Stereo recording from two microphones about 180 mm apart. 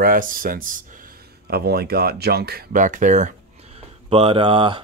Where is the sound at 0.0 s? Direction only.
50° right (ahead or behind).